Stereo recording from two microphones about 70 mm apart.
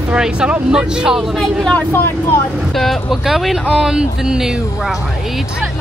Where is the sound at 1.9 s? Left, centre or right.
Left.